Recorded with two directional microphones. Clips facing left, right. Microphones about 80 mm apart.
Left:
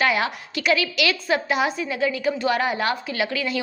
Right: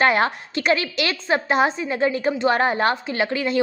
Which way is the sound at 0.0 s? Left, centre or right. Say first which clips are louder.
Right 4 dB; right.